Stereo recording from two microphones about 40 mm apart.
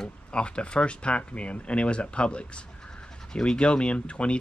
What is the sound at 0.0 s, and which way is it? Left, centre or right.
Speech, left.